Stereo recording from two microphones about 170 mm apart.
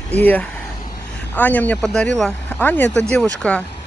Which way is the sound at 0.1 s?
10° left (ahead or behind).